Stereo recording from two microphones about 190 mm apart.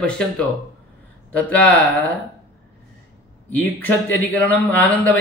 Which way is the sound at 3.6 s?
10° left (ahead or behind).